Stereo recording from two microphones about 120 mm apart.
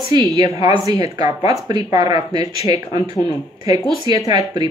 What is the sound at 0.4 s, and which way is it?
Speech, 35° right (ahead or behind).